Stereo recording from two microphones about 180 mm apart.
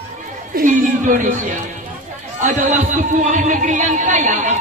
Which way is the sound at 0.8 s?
50° right (ahead or behind).